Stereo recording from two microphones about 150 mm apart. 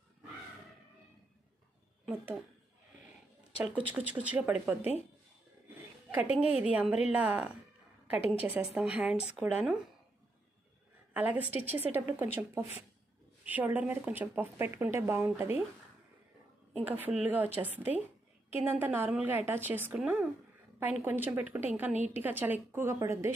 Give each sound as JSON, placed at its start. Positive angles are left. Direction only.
{"t": 3.7, "sound": "speech", "side_deg": -10}
{"t": 6.1, "sound": "speech", "side_deg": -10}
{"t": 11.1, "sound": "speech", "side_deg": -10}
{"t": 13.5, "sound": "speech", "side_deg": -10}
{"t": 16.7, "sound": "a woman's voice", "side_deg": -10}